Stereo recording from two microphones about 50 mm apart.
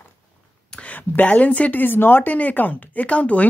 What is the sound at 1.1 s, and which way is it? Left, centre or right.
Speech, left.